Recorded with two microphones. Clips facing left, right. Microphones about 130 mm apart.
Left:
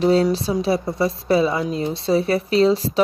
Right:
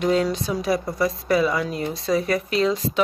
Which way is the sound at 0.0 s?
30° left (ahead or behind).